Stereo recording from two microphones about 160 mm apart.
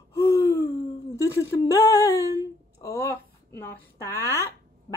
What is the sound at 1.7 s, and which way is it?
A woman's voice, 20° left (ahead or behind).